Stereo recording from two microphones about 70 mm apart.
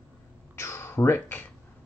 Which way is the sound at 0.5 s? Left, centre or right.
Left.